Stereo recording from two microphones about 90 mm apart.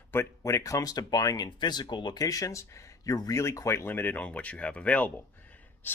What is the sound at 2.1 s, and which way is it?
Speech, 40° left (ahead or behind).